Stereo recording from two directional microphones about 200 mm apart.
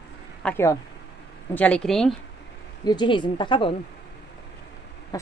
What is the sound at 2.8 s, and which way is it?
Speech, 25° left (ahead or behind).